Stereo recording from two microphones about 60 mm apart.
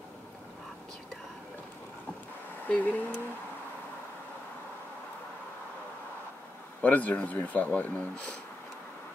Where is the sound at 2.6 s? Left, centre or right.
Left.